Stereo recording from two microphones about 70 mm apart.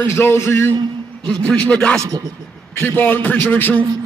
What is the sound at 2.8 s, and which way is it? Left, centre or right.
A man's voice, left.